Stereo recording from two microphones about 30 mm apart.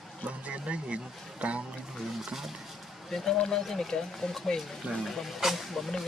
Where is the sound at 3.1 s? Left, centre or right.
Centre.